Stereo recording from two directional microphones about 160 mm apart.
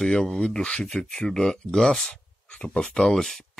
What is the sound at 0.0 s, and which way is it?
Speech, centre (ahead or behind).